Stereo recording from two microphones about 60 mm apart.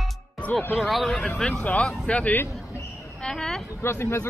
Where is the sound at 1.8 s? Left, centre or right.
Centre.